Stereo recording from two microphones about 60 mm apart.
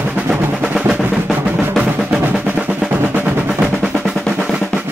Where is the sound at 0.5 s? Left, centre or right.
Centre.